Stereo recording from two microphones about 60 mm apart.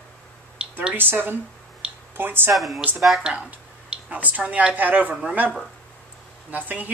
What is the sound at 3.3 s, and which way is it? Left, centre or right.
A woman's voice, right.